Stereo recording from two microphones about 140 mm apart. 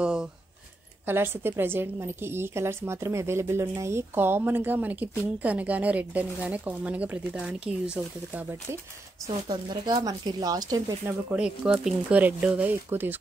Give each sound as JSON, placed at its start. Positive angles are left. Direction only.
{"t": 0.0, "sound": "a sound", "side_deg": -5}
{"t": 1.0, "sound": "a woman's voice", "side_deg": -15}
{"t": 9.5, "sound": "speech", "side_deg": -30}
{"t": 11.1, "sound": "a woman's voice", "side_deg": -5}